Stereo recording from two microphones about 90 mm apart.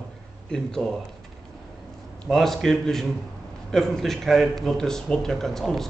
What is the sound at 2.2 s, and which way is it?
A man's voice, 5° left (ahead or behind).